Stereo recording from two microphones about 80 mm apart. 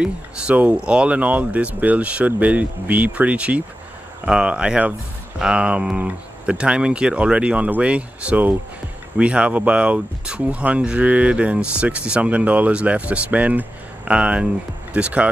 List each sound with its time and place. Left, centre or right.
0.0 s speech: centre